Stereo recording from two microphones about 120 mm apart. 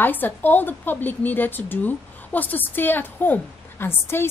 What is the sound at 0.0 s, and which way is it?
A woman's voice, 15° left (ahead or behind).